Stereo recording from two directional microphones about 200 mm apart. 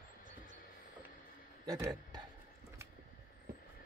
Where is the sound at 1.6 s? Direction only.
15° right (ahead or behind).